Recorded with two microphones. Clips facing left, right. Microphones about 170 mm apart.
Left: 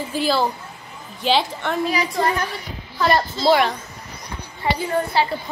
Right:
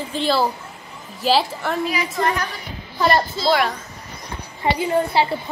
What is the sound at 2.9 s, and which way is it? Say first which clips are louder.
Speech: right 1 dB; 10° right (ahead or behind).